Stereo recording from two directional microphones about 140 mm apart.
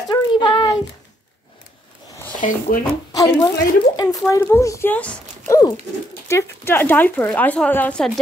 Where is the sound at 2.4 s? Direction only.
75° left (ahead or behind).